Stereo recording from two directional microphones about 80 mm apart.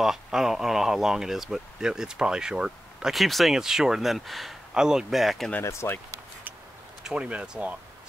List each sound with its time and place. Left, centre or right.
0.0 s speech: centre
5.6 s speech: left
7.0 s speech: centre